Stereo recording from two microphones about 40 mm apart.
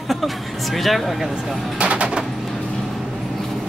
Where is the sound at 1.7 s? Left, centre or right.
Right.